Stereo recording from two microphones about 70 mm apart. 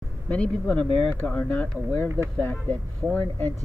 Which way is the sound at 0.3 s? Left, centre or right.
Centre.